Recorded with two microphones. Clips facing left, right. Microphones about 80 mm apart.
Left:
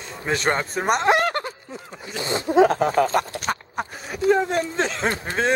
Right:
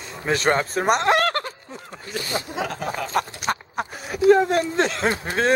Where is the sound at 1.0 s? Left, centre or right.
Centre.